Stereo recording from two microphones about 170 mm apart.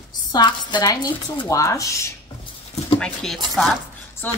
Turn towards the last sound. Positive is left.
turn(degrees=10)  # may be behind; listen again after turning